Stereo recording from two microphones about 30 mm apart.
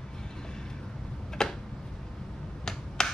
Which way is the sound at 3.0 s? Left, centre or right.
Left.